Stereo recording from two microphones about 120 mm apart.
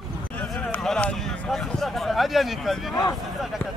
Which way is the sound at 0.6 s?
10° left (ahead or behind).